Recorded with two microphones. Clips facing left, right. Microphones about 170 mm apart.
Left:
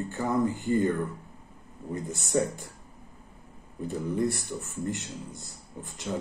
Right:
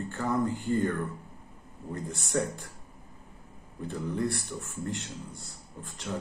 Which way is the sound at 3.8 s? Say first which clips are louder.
Left 3 dB; 10° left (ahead or behind).